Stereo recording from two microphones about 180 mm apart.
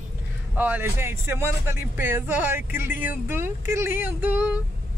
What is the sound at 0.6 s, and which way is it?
Speech, 10° right (ahead or behind).